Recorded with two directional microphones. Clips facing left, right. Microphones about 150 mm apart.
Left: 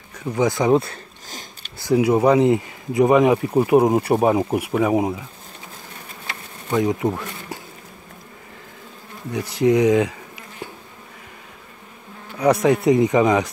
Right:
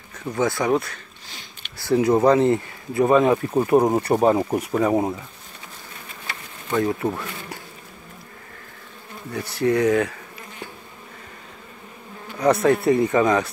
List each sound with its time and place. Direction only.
0.1 s speech: 10° left (ahead or behind); by 1.0 s 30° left (ahead or behind)
1.8 s speech: 10° left (ahead or behind)
6.7 s speech: 15° left (ahead or behind)
9.6 s speech: 15° left (ahead or behind)
12.4 s speech: 10° left (ahead or behind)